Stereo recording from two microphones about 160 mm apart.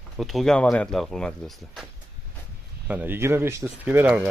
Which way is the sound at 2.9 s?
10° right (ahead or behind).